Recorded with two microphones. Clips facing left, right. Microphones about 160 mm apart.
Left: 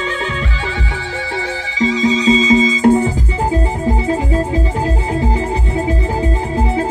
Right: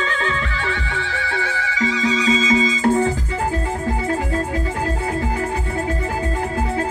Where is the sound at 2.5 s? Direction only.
15° left (ahead or behind).